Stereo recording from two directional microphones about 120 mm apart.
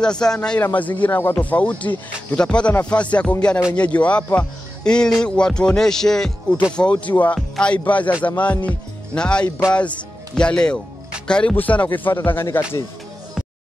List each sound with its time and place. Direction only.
0.0 s speech: 5° left (ahead or behind)